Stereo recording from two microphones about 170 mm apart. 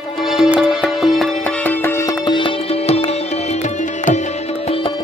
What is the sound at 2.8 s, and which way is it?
Music, 35° left (ahead or behind).